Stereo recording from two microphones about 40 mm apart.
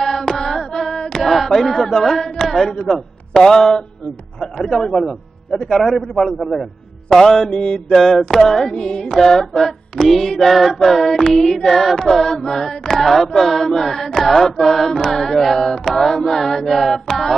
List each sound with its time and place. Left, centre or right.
0.0 s a sound: centre
1.2 s speech: centre
2.4 s a sound: centre
2.7 s mantra: centre
4.4 s a man's voice: centre
7.5 s mantra: centre
7.9 s mantra: centre
8.7 s mantra: centre
10.0 s a man's voice: centre
11.2 s mantra: centre
16.0 s chant: centre